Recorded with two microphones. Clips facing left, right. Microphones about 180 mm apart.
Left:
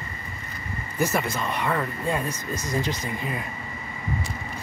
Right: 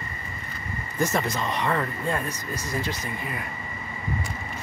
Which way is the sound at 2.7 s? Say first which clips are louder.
Left 3 dB; 20° left (ahead or behind).